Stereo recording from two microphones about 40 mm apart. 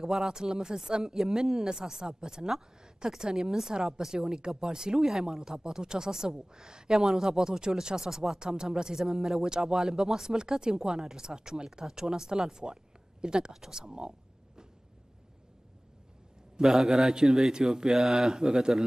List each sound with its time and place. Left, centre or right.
0.0 s speech: centre
16.7 s speech: centre